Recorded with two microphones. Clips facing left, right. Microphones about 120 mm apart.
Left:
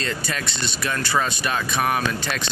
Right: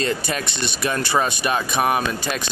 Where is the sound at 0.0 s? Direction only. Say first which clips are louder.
Right 4 dB; 15° right (ahead or behind).